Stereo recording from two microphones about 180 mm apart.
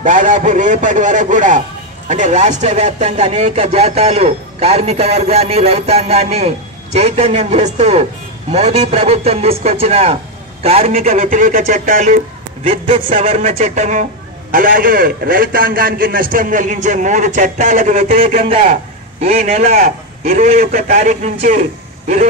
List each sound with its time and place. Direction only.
0.0 s a man's voice: 45° right (ahead or behind)
12.6 s a man's voice: 30° right (ahead or behind)
19.8 s a man's voice: 55° right (ahead or behind)